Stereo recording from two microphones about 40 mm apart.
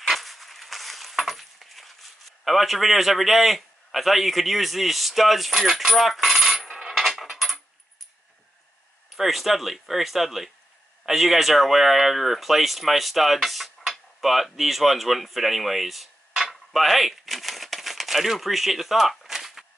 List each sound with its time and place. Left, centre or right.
0.1 s keys jangling: centre
2.4 s a man's voice: centre
6.8 s coin: centre
9.1 s speech: centre
16.4 s a sound: centre